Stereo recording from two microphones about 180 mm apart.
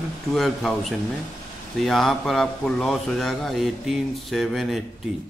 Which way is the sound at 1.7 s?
Centre (ahead or behind).